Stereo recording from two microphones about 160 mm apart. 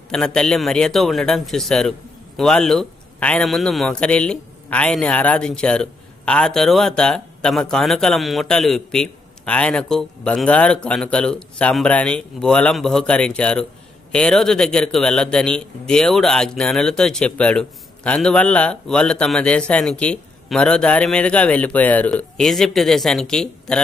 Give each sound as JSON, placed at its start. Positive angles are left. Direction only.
{"t": 0.1, "sound": "a man's voice", "side_deg": 5}